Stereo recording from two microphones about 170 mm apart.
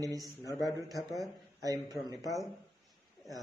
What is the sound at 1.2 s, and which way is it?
Speech, 20° right (ahead or behind).